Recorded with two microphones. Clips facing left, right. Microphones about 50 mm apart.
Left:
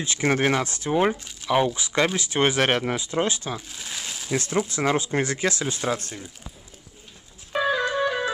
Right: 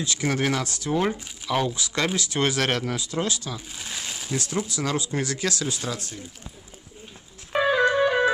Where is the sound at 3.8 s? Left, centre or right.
Centre.